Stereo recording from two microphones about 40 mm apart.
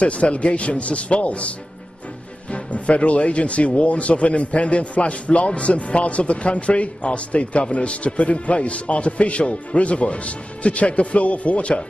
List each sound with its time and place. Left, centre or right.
0.0 s speech: left
2.5 s speech: left